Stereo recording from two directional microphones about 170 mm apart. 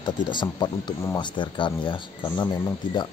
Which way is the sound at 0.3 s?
25° left (ahead or behind).